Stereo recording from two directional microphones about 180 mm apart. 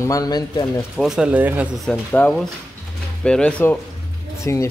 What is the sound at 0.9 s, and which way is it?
Speech, 5° right (ahead or behind).